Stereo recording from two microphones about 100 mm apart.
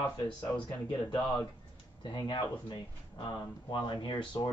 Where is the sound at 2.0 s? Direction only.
50° left (ahead or behind).